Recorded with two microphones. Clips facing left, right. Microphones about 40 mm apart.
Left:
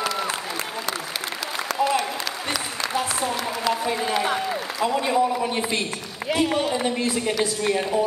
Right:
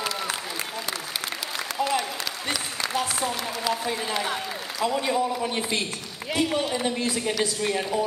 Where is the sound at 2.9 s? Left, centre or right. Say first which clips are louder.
Left 2 dB; centre.